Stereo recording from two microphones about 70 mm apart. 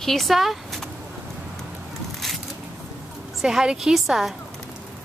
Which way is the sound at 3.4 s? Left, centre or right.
Centre.